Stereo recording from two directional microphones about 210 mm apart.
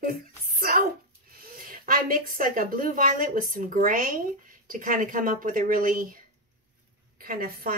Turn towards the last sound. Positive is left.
turn(degrees=-45)  # may be behind; listen again after turning